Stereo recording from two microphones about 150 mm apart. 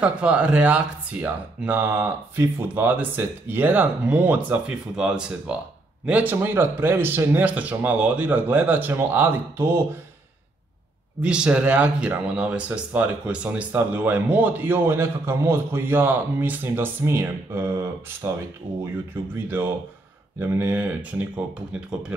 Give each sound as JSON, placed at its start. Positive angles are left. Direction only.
{"t": 0.0, "sound": "speech", "side_deg": -5}
{"t": 11.2, "sound": "speech", "side_deg": -5}
{"t": 19.3, "sound": "speech", "side_deg": -15}